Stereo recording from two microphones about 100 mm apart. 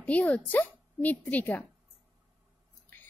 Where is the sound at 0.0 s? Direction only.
15° left (ahead or behind).